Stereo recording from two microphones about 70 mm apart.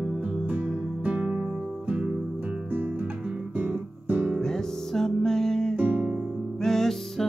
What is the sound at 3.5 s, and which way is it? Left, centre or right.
Guitar, right.